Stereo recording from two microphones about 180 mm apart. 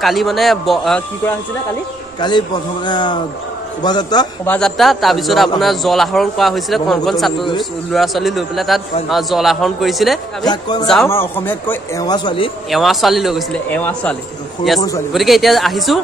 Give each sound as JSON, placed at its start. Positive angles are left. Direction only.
{"t": 0.0, "sound": "a man's voice", "side_deg": 0}
{"t": 2.1, "sound": "a man's voice", "side_deg": 25}
{"t": 4.5, "sound": "a man's voice", "side_deg": 5}
{"t": 10.4, "sound": "a man's voice", "side_deg": 25}
{"t": 11.1, "sound": "a man's voice", "side_deg": 15}
{"t": 12.6, "sound": "a man's voice", "side_deg": 0}